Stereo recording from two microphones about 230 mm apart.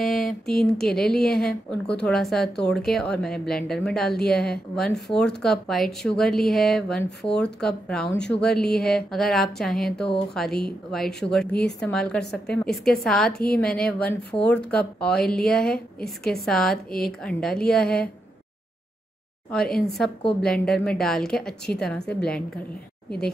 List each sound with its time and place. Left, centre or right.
0.0 s a sound: centre
0.5 s a woman's voice: centre
13.4 s a woman's voice: left
13.7 s a woman's voice: centre
20.0 s a woman's voice: centre